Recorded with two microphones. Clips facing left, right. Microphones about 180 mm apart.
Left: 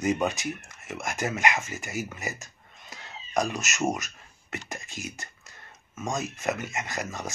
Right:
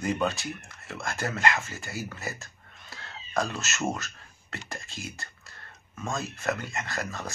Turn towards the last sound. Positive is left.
turn(degrees=20)  # may be behind; listen again after turning